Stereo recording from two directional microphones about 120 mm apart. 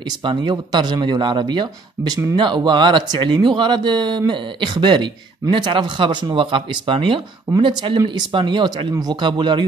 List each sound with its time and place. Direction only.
0.2 s speech: 40° right (ahead or behind)